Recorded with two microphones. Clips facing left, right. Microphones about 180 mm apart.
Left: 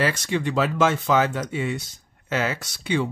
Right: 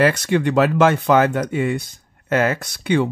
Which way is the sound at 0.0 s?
60° right (ahead or behind).